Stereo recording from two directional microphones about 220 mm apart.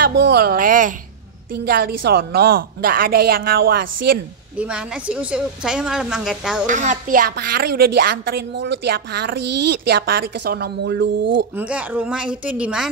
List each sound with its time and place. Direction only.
0.3 s a woman's voice: 45° right (ahead or behind)
4.6 s a woman's voice: 5° right (ahead or behind)
6.7 s speech: 35° right (ahead or behind); by 11.1 s 50° right (ahead or behind)
11.5 s a woman's voice: 5° right (ahead or behind)